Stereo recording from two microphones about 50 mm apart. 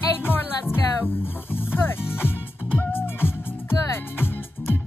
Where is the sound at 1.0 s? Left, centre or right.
Left.